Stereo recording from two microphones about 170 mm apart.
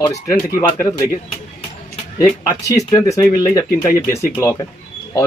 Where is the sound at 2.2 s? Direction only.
20° left (ahead or behind).